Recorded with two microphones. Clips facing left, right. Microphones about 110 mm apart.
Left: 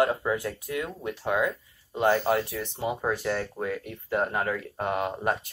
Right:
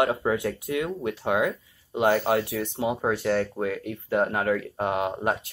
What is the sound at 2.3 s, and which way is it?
Speech, 75° right (ahead or behind).